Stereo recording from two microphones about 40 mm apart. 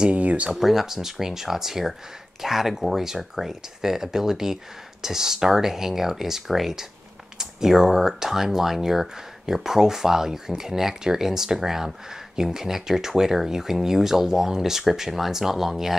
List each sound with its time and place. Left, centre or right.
0.1 s speech: right
0.5 s speech: centre